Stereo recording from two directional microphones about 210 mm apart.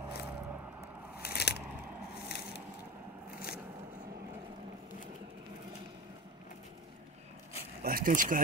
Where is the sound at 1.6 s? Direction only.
5° right (ahead or behind).